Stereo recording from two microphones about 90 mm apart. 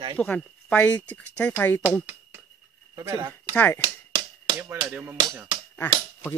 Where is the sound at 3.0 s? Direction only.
35° right (ahead or behind).